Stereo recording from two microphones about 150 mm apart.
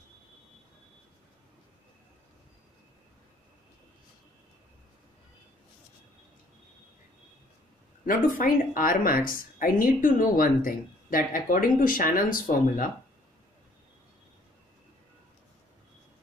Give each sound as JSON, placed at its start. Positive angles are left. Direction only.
{"t": 8.0, "sound": "a woman's voice", "side_deg": 65}